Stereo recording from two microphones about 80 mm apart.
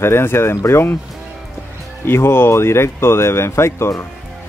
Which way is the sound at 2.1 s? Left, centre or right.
Left.